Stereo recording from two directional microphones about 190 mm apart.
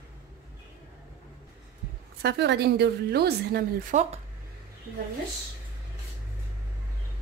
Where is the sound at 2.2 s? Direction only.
60° right (ahead or behind).